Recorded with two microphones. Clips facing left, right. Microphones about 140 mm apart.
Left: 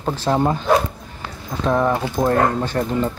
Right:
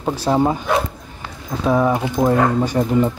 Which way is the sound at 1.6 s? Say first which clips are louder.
Right 2 dB; 5° right (ahead or behind).